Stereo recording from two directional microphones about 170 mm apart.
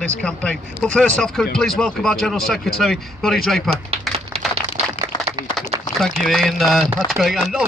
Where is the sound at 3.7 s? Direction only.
35° right (ahead or behind).